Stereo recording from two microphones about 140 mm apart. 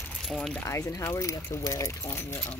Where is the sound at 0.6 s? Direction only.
20° left (ahead or behind).